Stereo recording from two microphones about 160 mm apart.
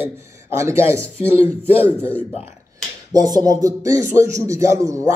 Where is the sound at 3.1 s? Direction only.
25° right (ahead or behind).